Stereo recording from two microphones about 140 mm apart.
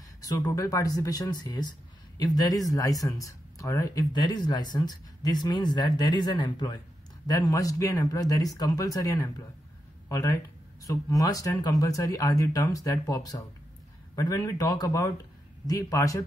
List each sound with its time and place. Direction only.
0.5 s speech: 25° left (ahead or behind)